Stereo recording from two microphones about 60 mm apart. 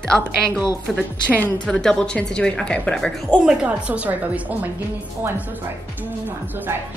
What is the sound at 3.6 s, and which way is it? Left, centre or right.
A woman's voice, right.